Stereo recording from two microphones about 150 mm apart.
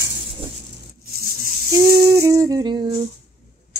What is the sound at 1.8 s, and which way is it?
Music, 20° right (ahead or behind).